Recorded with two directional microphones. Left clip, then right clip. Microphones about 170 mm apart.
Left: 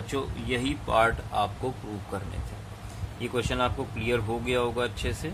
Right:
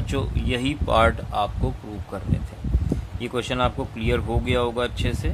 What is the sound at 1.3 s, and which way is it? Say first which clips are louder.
Speech: right 3 dB; 30° right (ahead or behind).